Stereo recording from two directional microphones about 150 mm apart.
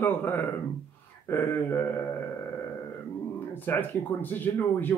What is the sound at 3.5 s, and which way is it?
Speech, 15° left (ahead or behind).